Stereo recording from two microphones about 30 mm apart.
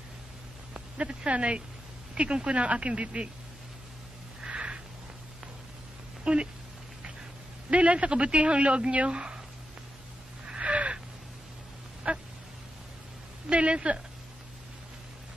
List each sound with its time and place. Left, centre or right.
0.7 s speech: right
4.5 s a sound: right
6.2 s speech: right
7.7 s speech: right
10.6 s wheeze: right
12.1 s quack: right
13.5 s speech: right